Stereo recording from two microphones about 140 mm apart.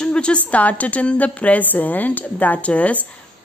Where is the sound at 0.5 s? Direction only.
10° left (ahead or behind).